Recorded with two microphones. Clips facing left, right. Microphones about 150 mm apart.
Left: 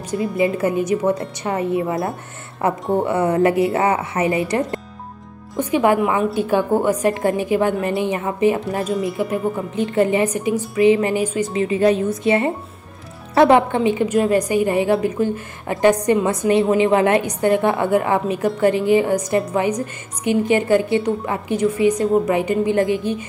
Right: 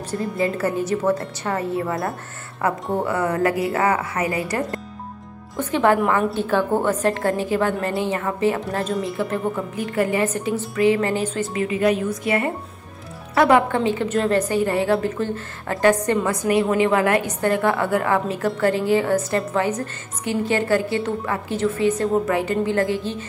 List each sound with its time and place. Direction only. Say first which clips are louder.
0.1 s a woman's voice: left 4 dB; 15° left (ahead or behind)